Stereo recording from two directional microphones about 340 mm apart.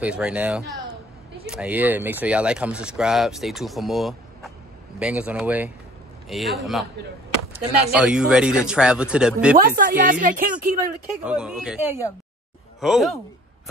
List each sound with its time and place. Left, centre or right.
0.0 s speech: centre
7.9 s speech: centre
9.8 s speech: right
11.1 s speech: centre